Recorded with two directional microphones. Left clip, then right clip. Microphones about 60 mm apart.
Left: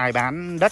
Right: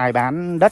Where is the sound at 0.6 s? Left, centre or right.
Right.